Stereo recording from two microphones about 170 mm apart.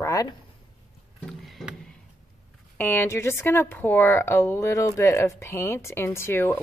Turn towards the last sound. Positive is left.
turn(degrees=10)  # may be behind; listen again after turning